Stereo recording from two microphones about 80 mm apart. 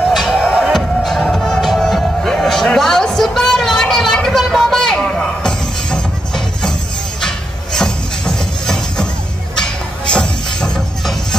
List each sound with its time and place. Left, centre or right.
0.1 s music: centre
1.0 s music: centre